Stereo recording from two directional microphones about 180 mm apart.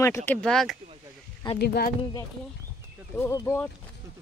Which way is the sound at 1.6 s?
60° left (ahead or behind).